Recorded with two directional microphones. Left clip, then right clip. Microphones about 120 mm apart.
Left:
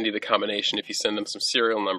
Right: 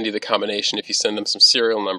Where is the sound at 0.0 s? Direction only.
30° right (ahead or behind).